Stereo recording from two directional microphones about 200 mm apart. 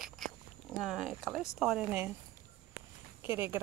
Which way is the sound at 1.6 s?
5° right (ahead or behind).